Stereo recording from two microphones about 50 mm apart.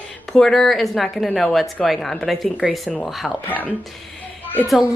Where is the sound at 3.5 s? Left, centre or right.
Left.